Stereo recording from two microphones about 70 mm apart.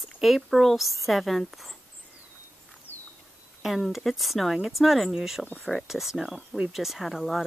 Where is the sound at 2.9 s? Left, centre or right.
Right.